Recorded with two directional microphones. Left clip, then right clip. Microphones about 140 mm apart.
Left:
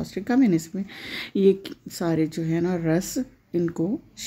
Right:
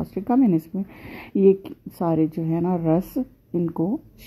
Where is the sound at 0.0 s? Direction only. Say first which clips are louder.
Right 2 dB; 20° right (ahead or behind).